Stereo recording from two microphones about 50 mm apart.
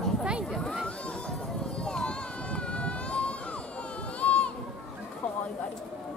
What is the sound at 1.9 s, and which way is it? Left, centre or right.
Run, centre.